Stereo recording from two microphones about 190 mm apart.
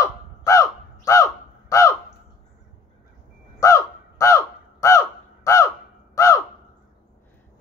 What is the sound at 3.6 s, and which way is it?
Crow, 15° left (ahead or behind).